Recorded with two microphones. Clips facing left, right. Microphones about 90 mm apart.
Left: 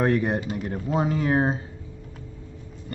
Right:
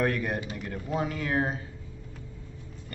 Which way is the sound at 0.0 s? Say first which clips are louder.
Left 6 dB; 25° left (ahead or behind).